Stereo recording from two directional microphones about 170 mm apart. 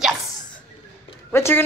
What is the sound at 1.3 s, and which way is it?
Speech, 15° left (ahead or behind).